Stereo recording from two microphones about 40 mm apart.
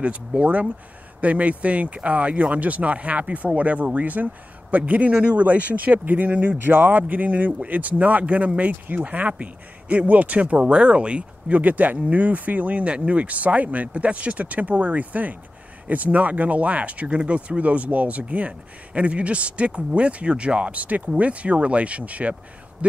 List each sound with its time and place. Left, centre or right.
0.4 s speech: right
11.5 s speech: right